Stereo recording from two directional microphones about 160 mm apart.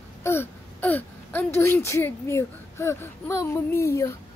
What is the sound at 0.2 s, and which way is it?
Speech, 15° left (ahead or behind).